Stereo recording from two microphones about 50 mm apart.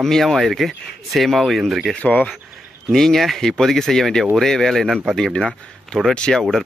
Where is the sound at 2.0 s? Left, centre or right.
Left.